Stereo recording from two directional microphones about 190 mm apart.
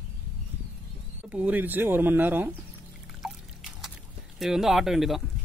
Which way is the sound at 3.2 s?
Centre (ahead or behind).